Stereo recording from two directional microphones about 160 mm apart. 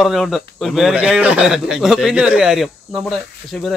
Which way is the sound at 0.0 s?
Centre (ahead or behind).